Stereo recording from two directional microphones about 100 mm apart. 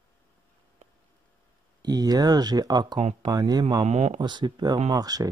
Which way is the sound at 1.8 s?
40° right (ahead or behind).